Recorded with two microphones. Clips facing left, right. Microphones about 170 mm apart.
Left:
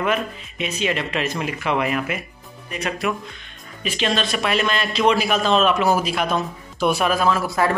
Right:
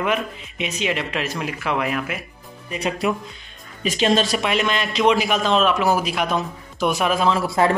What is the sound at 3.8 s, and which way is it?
Speech, 45° right (ahead or behind).